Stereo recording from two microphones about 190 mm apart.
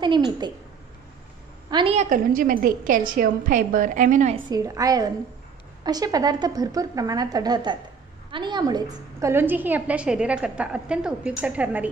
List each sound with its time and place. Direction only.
0.0 s a woman's voice: 25° right (ahead or behind)
1.7 s a woman's voice: 25° right (ahead or behind)
2.0 s a woman's voice: 45° right (ahead or behind)
4.5 s a woman's voice: 20° right (ahead or behind)